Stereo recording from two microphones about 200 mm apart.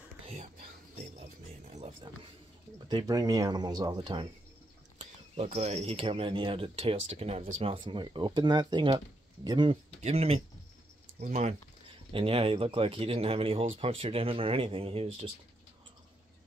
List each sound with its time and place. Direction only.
0.3 s music: 40° right (ahead or behind)
2.9 s speech: 20° right (ahead or behind)
5.3 s speech: 35° right (ahead or behind)